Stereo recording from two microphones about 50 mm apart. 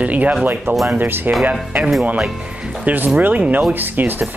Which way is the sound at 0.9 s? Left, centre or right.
Right.